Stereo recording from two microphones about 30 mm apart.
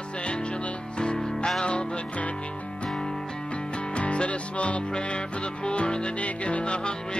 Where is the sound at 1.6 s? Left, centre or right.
Left.